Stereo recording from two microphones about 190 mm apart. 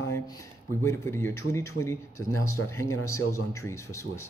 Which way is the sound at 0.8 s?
15° left (ahead or behind).